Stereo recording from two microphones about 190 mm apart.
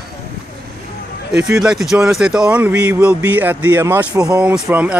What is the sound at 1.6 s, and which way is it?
Speech, 5° right (ahead or behind).